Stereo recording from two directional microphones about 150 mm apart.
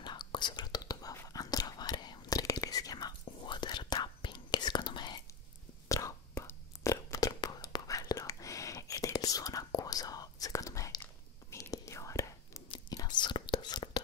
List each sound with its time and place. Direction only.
0.0 s whispering: 30° left (ahead or behind)